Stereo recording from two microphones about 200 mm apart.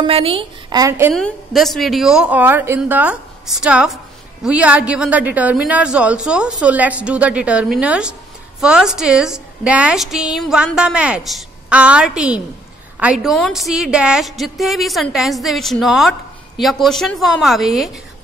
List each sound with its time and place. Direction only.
0.0 s a woman's voice: 30° right (ahead or behind)
1.1 s a woman's voice: centre (ahead or behind)